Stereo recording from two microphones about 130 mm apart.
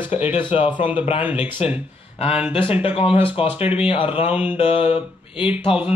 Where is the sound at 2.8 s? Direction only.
45° left (ahead or behind).